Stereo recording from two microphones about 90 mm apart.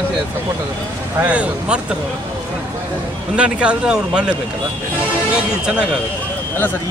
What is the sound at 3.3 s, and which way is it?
Speech, 10° right (ahead or behind).